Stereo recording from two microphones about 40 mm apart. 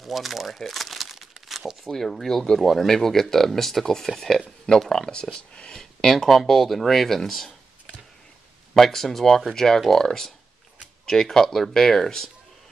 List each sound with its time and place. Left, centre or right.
0.0 s crumpling: centre
1.9 s speech: centre
6.1 s speech: centre
8.7 s speech: centre